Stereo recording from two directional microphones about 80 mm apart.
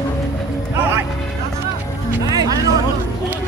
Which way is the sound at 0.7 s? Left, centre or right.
Right.